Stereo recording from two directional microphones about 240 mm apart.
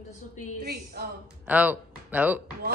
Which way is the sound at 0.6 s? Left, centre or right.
Right.